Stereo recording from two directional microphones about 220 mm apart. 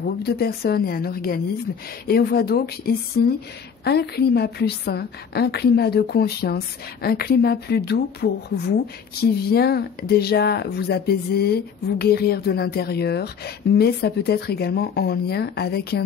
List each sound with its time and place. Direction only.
0.0 s a woman's voice: 45° left (ahead or behind)